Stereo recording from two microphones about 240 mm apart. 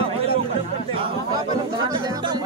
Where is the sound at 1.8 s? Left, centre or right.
Centre.